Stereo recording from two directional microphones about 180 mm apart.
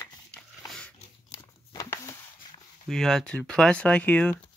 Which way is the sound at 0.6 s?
5° left (ahead or behind).